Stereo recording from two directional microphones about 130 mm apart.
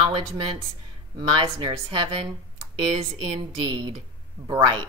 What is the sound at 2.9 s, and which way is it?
Speech, 50° right (ahead or behind).